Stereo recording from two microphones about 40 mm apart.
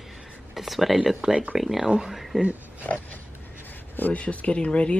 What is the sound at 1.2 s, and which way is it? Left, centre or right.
Speech, right.